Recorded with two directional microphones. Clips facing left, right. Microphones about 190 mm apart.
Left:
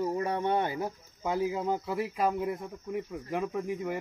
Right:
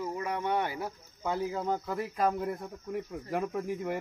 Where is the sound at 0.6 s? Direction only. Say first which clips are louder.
Left 3 dB; 20° left (ahead or behind).